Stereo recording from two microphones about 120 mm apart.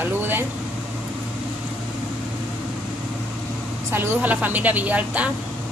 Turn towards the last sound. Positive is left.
turn(degrees=-10)  # may be behind; listen again after turning